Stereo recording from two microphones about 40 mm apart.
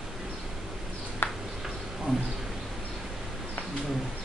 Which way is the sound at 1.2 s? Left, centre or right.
Left.